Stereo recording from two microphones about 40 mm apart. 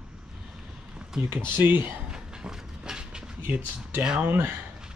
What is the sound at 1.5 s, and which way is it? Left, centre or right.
Speech, right.